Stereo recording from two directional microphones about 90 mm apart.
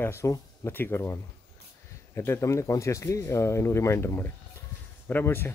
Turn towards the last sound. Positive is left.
turn(degrees=25)  # may be behind; listen again after turning